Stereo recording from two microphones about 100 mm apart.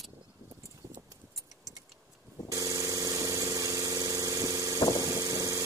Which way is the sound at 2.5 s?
35° right (ahead or behind).